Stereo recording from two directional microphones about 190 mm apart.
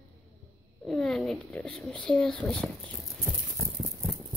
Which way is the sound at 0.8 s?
Centre (ahead or behind).